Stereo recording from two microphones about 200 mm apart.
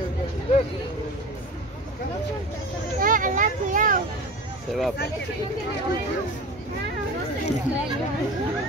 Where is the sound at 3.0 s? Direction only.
40° right (ahead or behind).